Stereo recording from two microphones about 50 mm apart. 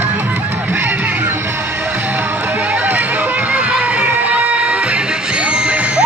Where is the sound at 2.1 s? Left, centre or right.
Right.